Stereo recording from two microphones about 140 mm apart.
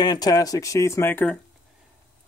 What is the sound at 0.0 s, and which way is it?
Speech, 30° left (ahead or behind).